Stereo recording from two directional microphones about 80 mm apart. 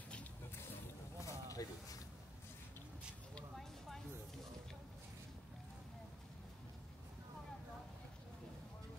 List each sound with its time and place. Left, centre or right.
1.2 s snake: left